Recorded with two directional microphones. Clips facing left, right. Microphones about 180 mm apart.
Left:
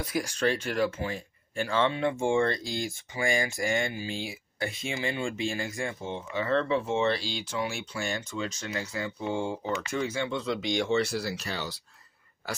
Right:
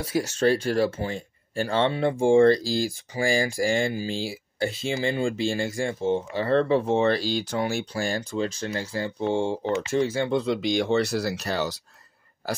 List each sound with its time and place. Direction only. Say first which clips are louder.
0.0 s speech: right 5 dB; 25° right (ahead or behind)
10.9 s speech: right 4 dB; 40° right (ahead or behind)